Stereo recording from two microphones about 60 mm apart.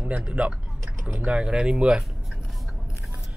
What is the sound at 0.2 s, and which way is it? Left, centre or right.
Speech, centre.